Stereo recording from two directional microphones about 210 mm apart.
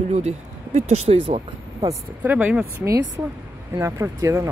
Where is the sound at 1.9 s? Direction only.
10° right (ahead or behind).